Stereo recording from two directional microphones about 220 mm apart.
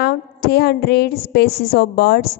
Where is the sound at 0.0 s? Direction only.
45° left (ahead or behind).